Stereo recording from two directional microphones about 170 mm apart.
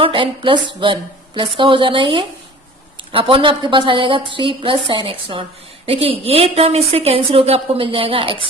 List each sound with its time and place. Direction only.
0.0 s a woman's voice: 30° right (ahead or behind)